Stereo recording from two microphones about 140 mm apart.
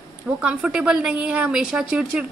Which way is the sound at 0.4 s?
5° right (ahead or behind).